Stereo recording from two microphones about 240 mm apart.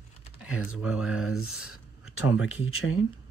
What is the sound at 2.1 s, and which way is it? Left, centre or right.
Speech, left.